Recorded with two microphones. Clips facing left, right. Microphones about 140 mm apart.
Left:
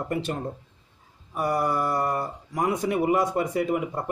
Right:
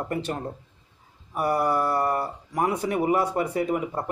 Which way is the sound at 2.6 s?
15° left (ahead or behind).